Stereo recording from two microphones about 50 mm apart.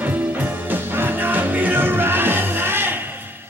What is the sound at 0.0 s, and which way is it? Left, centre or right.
Music, right.